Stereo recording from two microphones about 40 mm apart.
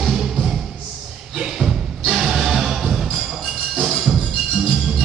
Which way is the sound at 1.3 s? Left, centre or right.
Centre.